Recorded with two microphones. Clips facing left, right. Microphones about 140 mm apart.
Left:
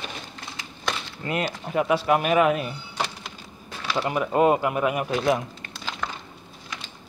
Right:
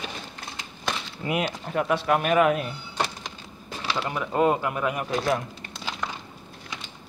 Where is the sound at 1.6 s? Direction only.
5° left (ahead or behind).